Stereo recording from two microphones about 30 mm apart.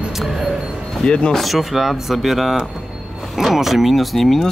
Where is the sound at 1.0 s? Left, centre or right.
Left.